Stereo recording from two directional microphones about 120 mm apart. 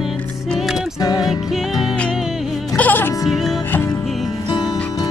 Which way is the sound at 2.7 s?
15° left (ahead or behind).